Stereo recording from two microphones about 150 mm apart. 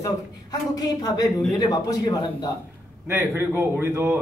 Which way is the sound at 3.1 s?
15° right (ahead or behind).